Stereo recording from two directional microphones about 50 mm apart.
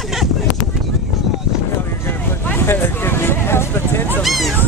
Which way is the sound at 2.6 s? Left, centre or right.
Left.